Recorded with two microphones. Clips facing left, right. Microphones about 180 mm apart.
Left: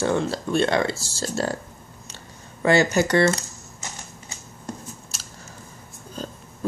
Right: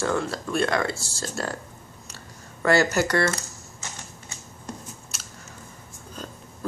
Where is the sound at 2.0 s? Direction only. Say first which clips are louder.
Left 1 dB; 20° left (ahead or behind).